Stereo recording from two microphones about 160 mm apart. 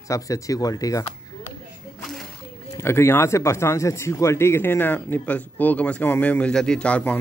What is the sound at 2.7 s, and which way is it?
A man's voice, 15° left (ahead or behind).